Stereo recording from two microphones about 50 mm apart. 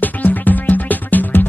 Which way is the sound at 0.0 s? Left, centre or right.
Left.